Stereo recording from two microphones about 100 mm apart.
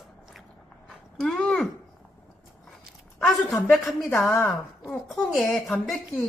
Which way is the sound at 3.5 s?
20° left (ahead or behind).